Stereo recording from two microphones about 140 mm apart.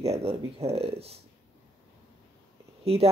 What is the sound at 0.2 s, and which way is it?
Speech, 45° right (ahead or behind).